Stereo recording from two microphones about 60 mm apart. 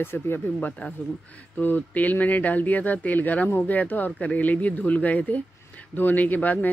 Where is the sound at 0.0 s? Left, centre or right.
Left.